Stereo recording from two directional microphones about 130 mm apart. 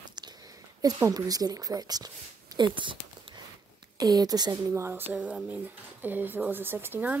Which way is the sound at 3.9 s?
30° right (ahead or behind).